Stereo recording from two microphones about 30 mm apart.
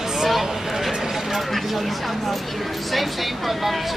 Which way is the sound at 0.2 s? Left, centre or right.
Centre.